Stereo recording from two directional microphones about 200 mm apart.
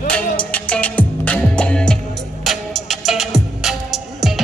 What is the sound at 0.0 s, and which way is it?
Music, 5° left (ahead or behind).